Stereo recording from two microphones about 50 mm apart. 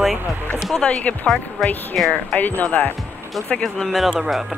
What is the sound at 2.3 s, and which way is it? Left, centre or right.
Speech, left.